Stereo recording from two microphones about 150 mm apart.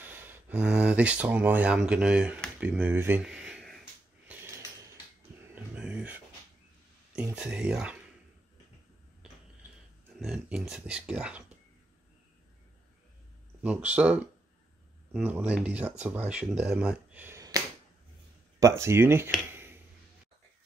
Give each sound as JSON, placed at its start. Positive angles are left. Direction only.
{"t": 0.0, "sound": "speech", "side_deg": -15}
{"t": 5.5, "sound": "a sound", "side_deg": -5}
{"t": 7.3, "sound": "speech", "side_deg": -5}
{"t": 10.1, "sound": "speech", "side_deg": -5}
{"t": 13.6, "sound": "speech", "side_deg": -10}
{"t": 17.4, "sound": "finger snapping", "side_deg": -25}
{"t": 18.6, "sound": "speech", "side_deg": -20}
{"t": 19.5, "sound": "a sound", "side_deg": -15}